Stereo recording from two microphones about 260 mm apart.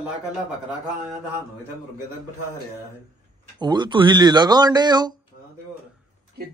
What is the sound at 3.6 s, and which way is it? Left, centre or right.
Speech, centre.